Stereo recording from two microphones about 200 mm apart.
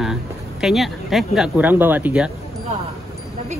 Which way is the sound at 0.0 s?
Centre (ahead or behind).